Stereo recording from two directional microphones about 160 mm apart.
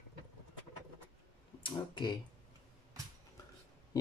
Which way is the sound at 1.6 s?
30° left (ahead or behind).